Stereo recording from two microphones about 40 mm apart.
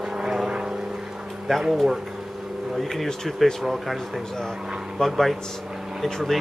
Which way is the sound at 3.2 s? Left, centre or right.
Centre.